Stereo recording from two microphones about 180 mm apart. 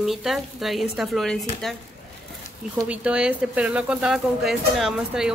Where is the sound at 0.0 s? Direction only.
Centre (ahead or behind).